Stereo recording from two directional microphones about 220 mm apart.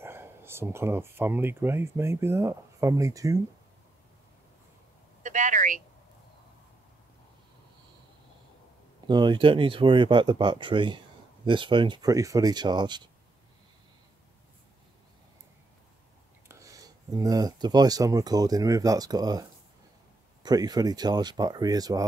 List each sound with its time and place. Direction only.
0.0 s speech: 10° right (ahead or behind)
5.2 s a sound: 35° right (ahead or behind)
9.0 s speech: 20° right (ahead or behind)
16.4 s speech: 15° right (ahead or behind)
20.4 s speech: 15° right (ahead or behind)